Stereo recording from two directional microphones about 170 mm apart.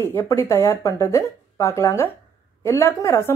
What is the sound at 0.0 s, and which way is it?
A woman's voice, 15° left (ahead or behind).